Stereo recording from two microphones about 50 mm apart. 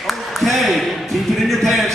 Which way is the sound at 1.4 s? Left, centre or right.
Centre.